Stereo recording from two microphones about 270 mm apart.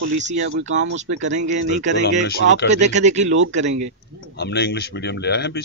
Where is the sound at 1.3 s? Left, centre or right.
Right.